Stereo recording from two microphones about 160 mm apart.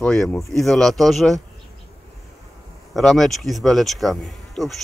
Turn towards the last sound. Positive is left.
turn(degrees=0)  # may be behind; listen again after turning